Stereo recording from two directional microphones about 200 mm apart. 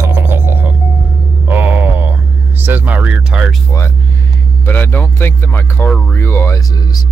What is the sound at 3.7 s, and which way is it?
Speech, 15° left (ahead or behind).